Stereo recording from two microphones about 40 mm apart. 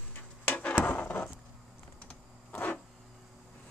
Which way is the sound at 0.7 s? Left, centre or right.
Left.